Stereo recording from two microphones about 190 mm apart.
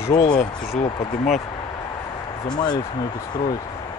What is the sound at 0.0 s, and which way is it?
Speech, 20° left (ahead or behind).